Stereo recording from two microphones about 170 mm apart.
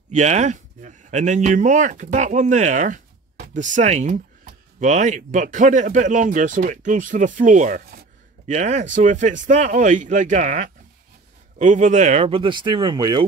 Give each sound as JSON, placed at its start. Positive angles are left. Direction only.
{"t": 0.1, "sound": "speech", "side_deg": -40}